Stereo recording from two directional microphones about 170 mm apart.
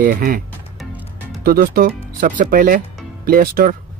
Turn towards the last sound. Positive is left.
turn(degrees=-60)  # may be behind; listen again after turning